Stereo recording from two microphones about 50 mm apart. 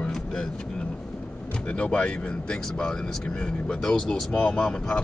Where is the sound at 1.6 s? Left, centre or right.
Left.